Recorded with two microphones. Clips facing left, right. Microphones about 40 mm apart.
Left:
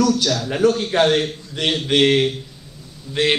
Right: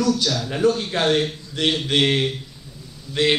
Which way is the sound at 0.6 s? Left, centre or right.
Left.